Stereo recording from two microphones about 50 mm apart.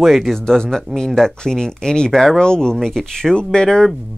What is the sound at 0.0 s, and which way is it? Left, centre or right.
Speech, centre.